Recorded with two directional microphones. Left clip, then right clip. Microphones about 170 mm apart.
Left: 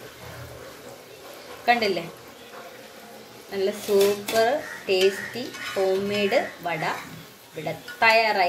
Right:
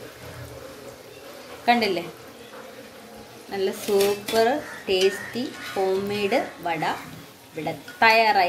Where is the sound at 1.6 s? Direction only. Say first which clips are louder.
Right 1 dB; 15° right (ahead or behind).